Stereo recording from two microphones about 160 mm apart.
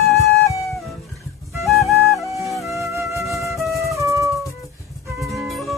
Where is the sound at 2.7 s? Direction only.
20° right (ahead or behind).